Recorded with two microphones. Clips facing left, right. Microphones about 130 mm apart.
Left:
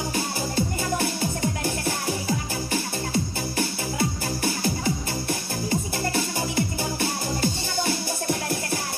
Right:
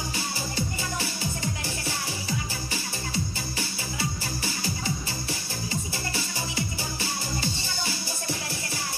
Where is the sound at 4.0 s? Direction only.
55° left (ahead or behind).